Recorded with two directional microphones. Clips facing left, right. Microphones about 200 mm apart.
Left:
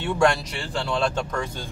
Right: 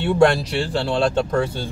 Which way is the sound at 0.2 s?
35° right (ahead or behind).